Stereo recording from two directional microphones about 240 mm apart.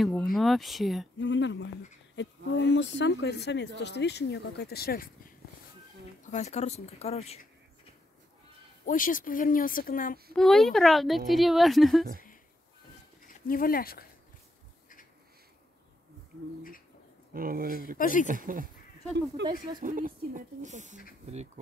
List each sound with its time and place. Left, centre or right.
0.0 s a woman's voice: centre
1.1 s speech: left
8.8 s speech: left
10.3 s a woman's voice: centre
13.5 s speech: left
17.3 s speech: right
17.9 s speech: left
18.2 s speech: right
19.4 s speech: right
19.8 s speech: right